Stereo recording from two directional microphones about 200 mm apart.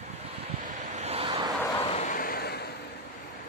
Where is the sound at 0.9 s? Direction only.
30° right (ahead or behind).